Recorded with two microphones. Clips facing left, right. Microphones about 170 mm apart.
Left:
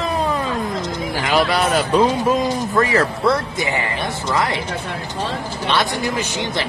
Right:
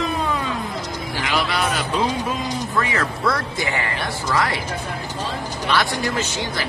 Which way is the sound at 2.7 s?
35° left (ahead or behind).